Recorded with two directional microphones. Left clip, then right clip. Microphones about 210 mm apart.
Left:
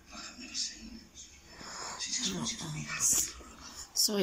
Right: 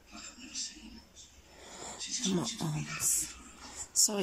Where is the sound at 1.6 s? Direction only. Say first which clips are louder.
Left 4 dB; 25° right (ahead or behind).